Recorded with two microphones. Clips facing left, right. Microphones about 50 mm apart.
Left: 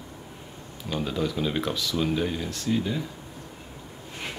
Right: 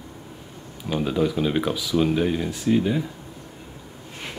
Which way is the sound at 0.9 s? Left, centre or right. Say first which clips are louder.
Right 5 dB; centre.